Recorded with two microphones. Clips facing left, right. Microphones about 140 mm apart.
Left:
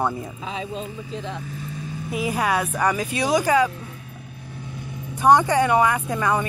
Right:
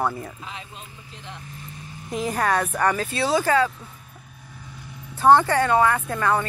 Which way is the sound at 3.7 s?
70° left (ahead or behind).